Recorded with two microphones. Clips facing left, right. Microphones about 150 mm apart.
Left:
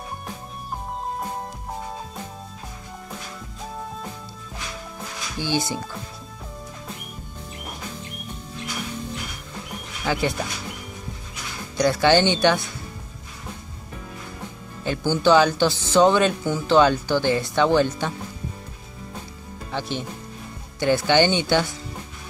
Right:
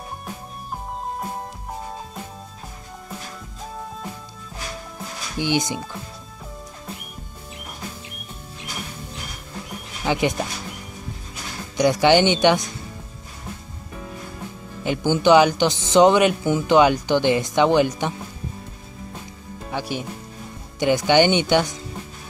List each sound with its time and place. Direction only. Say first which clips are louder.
5.4 s speech: right 2 dB; 15° right (ahead or behind)
10.0 s speech: right 2 dB; 20° right (ahead or behind)
11.7 s speech: right 2 dB; 15° right (ahead or behind)
14.8 s speech: right 2 dB; 15° right (ahead or behind)
19.7 s speech: right 1 dB; 10° right (ahead or behind)